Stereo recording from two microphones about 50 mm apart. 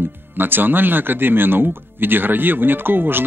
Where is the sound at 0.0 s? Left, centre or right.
Right.